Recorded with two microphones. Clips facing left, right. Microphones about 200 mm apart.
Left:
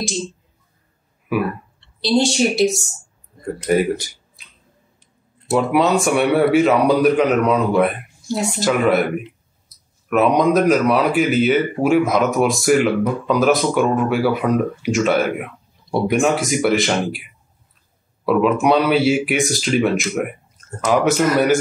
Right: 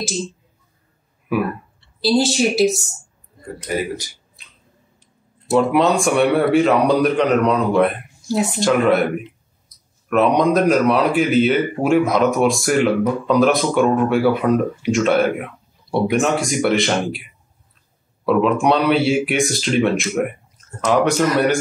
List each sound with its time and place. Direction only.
1.3 s speech: centre (ahead or behind)
3.7 s speech: 55° left (ahead or behind)
4.4 s finger snapping: centre (ahead or behind)
5.5 s speech: centre (ahead or behind)
10.0 s speech: 5° left (ahead or behind)